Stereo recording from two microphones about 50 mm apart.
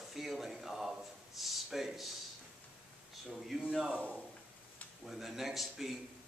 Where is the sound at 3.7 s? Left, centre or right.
Centre.